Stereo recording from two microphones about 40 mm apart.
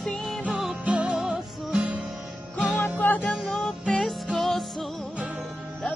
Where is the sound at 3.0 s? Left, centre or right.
Left.